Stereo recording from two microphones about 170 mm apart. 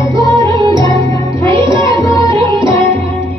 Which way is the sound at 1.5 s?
30° right (ahead or behind).